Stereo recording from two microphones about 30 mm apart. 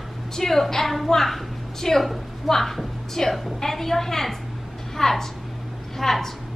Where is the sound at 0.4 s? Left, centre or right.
Centre.